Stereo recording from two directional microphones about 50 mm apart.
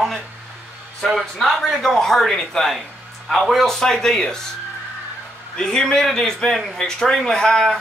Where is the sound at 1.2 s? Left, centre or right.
Centre.